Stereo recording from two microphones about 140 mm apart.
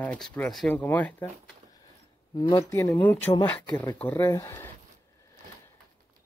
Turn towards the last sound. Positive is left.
turn(degrees=20)  # may be behind; listen again after turning